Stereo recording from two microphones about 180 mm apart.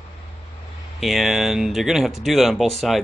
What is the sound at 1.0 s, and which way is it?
Speech, centre (ahead or behind).